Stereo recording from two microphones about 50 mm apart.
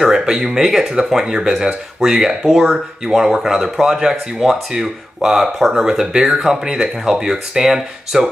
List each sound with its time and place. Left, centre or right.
0.0 s speech: centre